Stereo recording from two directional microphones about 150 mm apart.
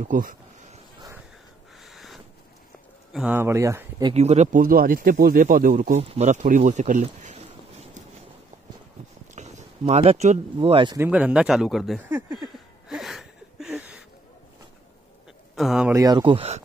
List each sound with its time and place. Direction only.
0.0 s speech: 65° right (ahead or behind)
1.8 s a sound: centre (ahead or behind)
3.1 s speech: 5° right (ahead or behind)
3.3 s speech: 20° right (ahead or behind)
4.1 s speech: 45° right (ahead or behind); by 5.9 s 65° right (ahead or behind)
5.9 s speech: 50° right (ahead or behind)
9.3 s speech: 50° right (ahead or behind)
11.0 s speech: 10° right (ahead or behind)
12.5 s a sound: centre (ahead or behind)
15.5 s speech: centre (ahead or behind)
15.9 s speech: 25° right (ahead or behind); by 16.6 s 40° right (ahead or behind)